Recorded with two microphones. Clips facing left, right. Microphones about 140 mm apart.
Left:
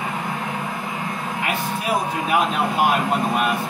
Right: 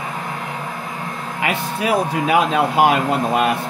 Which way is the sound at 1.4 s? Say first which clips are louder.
Right 5 dB; 90° right.